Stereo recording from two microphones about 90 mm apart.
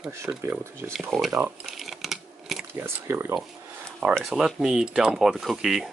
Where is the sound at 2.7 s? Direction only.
25° right (ahead or behind).